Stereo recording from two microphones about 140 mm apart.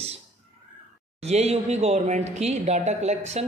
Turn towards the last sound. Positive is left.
turn(degrees=-50)  # may be behind; listen again after turning